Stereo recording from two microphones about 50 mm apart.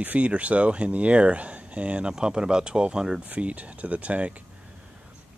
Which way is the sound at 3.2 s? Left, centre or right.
Right.